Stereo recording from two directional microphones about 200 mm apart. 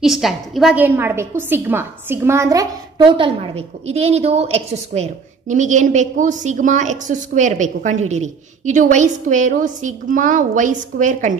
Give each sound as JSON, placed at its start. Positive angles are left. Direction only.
{"t": 0.0, "sound": "a woman's voice", "side_deg": 0}
{"t": 3.2, "sound": "a woman's voice", "side_deg": -30}